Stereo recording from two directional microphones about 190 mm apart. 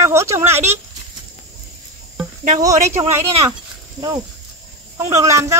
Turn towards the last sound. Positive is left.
turn(degrees=-15)  # may be behind; listen again after turning